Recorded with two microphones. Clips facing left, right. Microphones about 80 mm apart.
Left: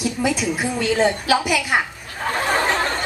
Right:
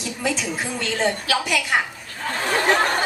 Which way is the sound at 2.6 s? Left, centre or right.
Centre.